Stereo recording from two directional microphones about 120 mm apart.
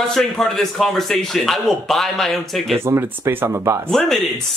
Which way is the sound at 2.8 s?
20° right (ahead or behind).